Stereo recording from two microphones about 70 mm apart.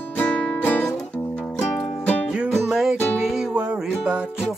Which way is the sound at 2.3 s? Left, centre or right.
Centre.